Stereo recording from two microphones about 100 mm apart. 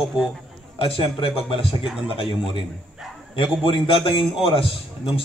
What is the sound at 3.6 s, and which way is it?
A man's voice, 65° left (ahead or behind).